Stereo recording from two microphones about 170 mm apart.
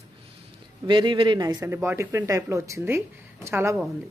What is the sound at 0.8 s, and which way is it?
Speech, 30° right (ahead or behind).